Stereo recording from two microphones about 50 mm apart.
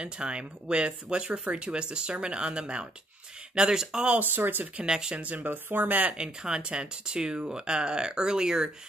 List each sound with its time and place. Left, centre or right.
0.0 s speech: centre
4.2 s speech: right
4.8 s speech: centre
5.1 s speech: right
6.1 s speech: centre